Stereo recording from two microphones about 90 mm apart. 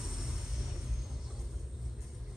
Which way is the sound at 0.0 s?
5° right (ahead or behind).